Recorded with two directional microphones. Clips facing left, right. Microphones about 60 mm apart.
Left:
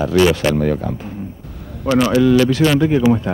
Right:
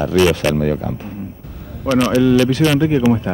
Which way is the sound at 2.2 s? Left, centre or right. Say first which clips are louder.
Even; centre.